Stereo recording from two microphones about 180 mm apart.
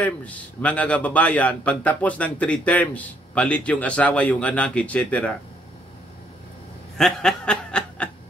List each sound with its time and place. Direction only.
0.0 s a man's voice: 10° left (ahead or behind)
7.0 s snicker: 5° left (ahead or behind)